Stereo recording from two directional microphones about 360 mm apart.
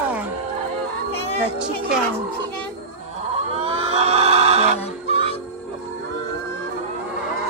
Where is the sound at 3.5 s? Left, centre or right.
Centre.